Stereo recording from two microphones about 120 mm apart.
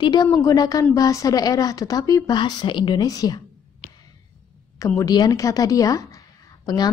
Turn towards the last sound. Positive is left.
turn(degrees=35)  # may be behind; listen again after turning